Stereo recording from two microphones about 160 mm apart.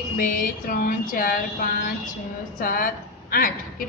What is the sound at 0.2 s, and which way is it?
A woman's voice, 60° left (ahead or behind).